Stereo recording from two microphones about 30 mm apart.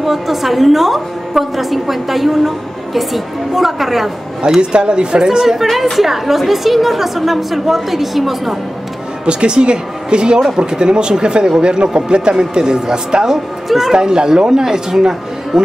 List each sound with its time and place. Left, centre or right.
0.0 s a woman's voice: centre
4.6 s a man's voice: right; by 8.5 s centre
9.2 s a woman's voice: right
13.7 s speech: centre
13.9 s a man's voice: right